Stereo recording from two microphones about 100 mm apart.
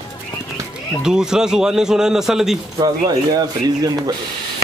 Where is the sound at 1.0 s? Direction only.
5° right (ahead or behind).